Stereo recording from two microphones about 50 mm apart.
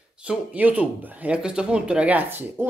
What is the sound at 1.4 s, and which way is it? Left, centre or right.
Speech, centre.